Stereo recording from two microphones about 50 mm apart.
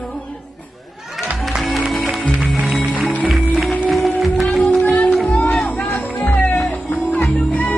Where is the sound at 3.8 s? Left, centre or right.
Centre.